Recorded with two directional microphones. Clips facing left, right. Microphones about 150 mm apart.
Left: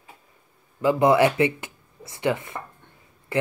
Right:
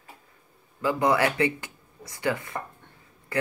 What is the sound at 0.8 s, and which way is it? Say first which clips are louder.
Speech: left 5 dB; 20° left (ahead or behind).